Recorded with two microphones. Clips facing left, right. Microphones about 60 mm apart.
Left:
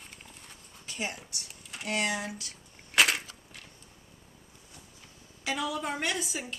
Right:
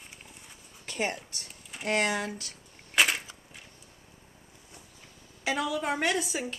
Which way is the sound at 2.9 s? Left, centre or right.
Centre.